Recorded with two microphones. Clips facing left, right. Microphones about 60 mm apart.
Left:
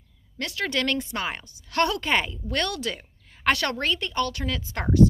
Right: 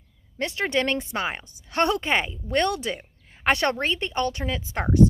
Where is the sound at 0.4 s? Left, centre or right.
Right.